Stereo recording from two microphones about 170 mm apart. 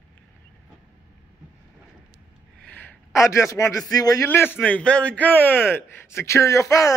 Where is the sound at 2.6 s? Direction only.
10° left (ahead or behind).